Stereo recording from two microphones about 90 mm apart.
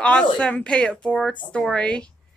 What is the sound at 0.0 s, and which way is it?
Speech, 10° left (ahead or behind).